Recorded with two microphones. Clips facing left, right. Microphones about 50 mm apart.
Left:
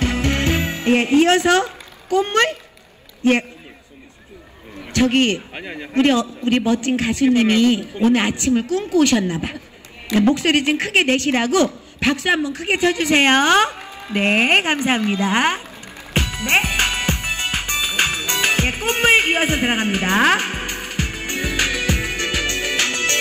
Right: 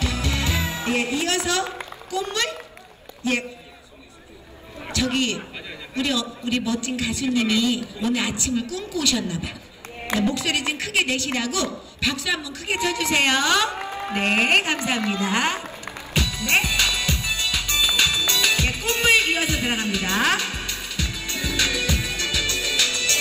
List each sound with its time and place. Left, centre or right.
0.0 s music: left
3.2 s a man's voice: left
4.9 s a man's voice: left
13.7 s music: right
14.1 s speech: left
16.1 s music: left